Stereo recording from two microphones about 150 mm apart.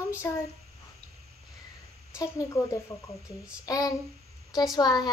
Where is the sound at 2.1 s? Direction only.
20° left (ahead or behind).